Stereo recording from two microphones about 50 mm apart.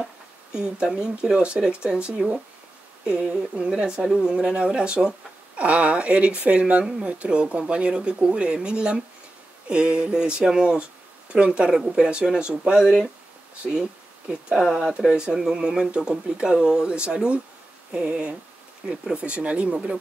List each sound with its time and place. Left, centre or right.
0.0 s speech: centre
12.8 s speech: centre
14.5 s speech: centre
15.0 s speech: centre